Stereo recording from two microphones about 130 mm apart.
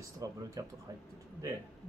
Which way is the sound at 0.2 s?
25° right (ahead or behind).